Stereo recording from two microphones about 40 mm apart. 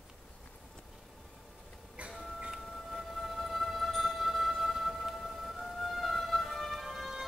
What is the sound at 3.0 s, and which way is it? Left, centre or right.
Music, centre.